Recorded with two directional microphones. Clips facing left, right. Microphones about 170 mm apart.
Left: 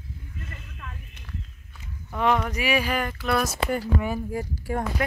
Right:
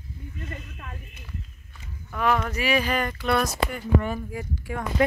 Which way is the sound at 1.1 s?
5° right (ahead or behind).